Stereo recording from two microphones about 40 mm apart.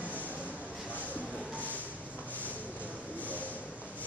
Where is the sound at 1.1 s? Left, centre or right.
Left.